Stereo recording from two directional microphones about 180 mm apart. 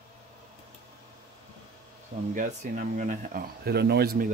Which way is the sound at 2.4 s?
45° right (ahead or behind).